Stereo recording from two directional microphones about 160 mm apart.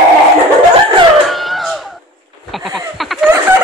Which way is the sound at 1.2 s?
Centre (ahead or behind).